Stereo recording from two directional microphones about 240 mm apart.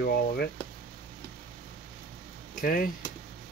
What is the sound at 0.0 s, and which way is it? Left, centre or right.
Speech, left.